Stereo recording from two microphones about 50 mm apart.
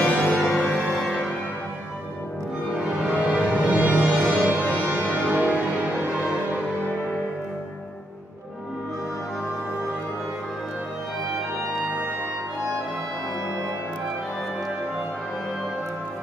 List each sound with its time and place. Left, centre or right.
0.0 s music: left
2.8 s music: right
5.9 s music: right